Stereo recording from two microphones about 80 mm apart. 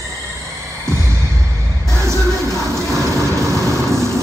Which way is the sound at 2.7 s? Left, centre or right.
Right.